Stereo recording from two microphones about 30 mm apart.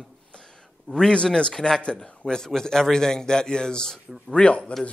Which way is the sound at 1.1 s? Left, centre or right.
Left.